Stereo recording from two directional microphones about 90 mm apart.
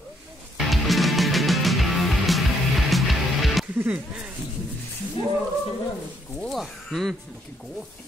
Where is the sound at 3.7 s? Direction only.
20° right (ahead or behind).